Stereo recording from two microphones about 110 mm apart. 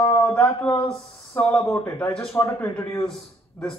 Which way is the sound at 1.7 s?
20° left (ahead or behind).